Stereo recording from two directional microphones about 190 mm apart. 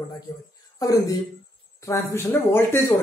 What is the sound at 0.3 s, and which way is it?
Speech, 20° left (ahead or behind).